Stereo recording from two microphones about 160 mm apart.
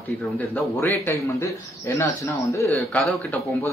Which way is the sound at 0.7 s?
15° left (ahead or behind).